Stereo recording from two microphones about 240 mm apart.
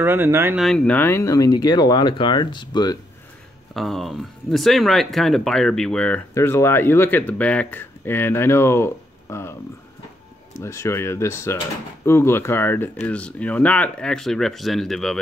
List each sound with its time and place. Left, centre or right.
0.0 s speech: centre
3.7 s speech: centre
10.6 s speech: centre